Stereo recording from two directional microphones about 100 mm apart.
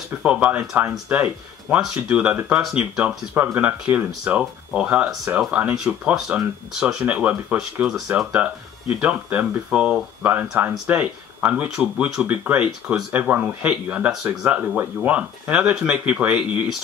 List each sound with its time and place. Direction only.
0.2 s speech: 10° right (ahead or behind)
6.1 s speech: 5° right (ahead or behind)